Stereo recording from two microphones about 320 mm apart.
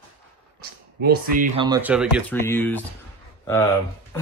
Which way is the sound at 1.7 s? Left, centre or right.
Centre.